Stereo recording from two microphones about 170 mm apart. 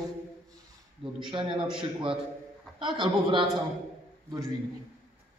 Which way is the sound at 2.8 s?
30° right (ahead or behind).